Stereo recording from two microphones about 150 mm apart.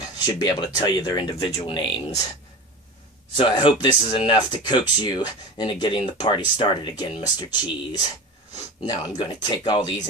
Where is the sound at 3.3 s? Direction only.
35° left (ahead or behind).